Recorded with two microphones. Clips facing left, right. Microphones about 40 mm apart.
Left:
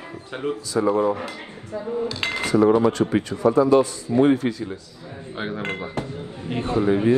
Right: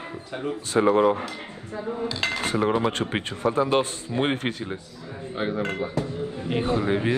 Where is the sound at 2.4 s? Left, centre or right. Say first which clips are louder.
Left 8 dB; right.